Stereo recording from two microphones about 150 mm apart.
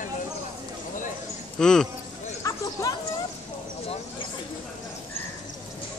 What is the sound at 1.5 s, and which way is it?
Speech, 5° left (ahead or behind).